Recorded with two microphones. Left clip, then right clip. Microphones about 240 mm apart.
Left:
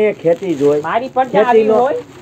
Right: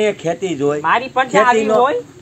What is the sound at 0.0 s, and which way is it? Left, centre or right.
Speech, right.